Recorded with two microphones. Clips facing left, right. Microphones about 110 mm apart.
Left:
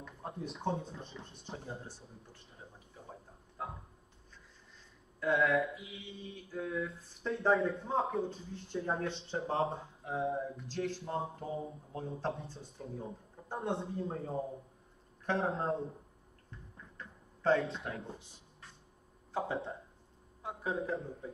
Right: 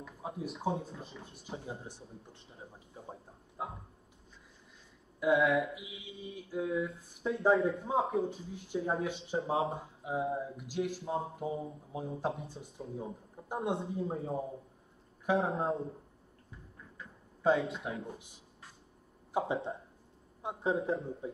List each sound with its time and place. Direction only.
0.0 s speech: 5° right (ahead or behind)
2.9 s a sound: 25° right (ahead or behind)
5.2 s speech: 5° right (ahead or behind)
15.2 s speech: centre (ahead or behind)
17.4 s speech: 10° right (ahead or behind)
19.3 s a man's voice: 20° right (ahead or behind)